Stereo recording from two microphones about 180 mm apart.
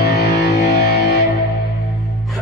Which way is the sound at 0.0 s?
65° left (ahead or behind).